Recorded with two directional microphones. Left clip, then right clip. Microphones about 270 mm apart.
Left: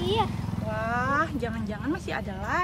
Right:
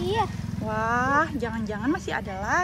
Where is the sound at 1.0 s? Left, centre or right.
Centre.